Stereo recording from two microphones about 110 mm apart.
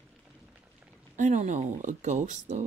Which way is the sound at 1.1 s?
90° right.